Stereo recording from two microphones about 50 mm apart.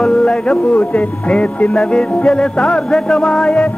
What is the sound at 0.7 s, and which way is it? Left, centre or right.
Music, left.